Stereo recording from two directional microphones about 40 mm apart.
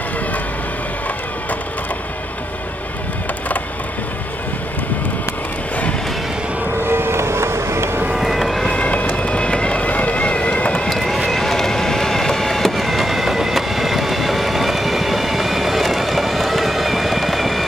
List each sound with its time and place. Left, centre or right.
6.8 s vehicle: right
8.2 s vehicle: centre
8.7 s vehicle: left
10.9 s vehicle: centre